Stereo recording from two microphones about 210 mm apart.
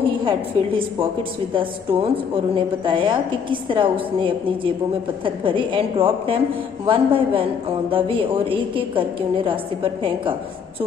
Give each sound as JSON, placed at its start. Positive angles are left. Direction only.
{"t": 0.2, "sound": "a woman's voice", "side_deg": -25}